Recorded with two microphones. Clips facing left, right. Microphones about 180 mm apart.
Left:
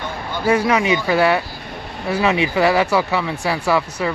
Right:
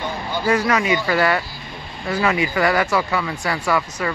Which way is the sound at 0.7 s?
15° left (ahead or behind).